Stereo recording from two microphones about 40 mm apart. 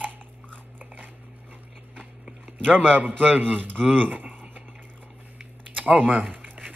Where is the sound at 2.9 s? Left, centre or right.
Right.